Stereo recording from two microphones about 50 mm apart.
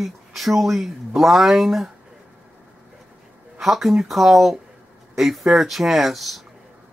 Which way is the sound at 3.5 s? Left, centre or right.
Centre.